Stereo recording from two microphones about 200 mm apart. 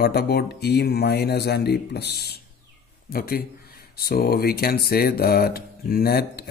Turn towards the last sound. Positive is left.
turn(degrees=50)  # may be behind; listen again after turning